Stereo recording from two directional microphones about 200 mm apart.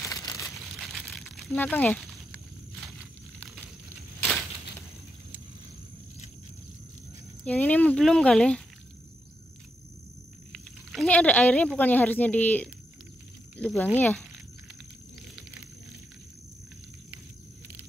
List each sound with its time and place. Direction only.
0.0 s crumpling: 15° left (ahead or behind)
0.7 s crumpling: centre (ahead or behind)
7.4 s speech: 5° left (ahead or behind)
10.5 s a sound: centre (ahead or behind)
11.8 s speech: 10° left (ahead or behind)